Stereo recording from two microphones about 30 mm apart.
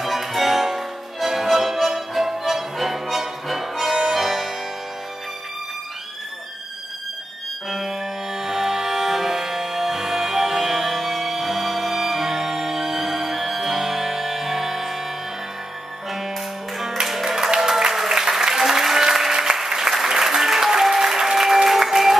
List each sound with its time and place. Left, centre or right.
0.0 s music: centre
7.7 s music: centre
16.7 s music: centre
18.5 s applause: centre
19.5 s applause: right
19.9 s applause: centre